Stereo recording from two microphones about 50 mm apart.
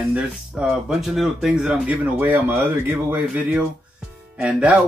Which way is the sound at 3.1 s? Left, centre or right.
Right.